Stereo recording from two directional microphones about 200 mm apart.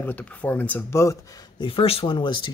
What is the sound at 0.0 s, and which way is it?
Speech, 5° left (ahead or behind).